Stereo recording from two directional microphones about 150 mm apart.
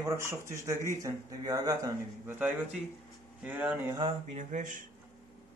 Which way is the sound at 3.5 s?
10° right (ahead or behind).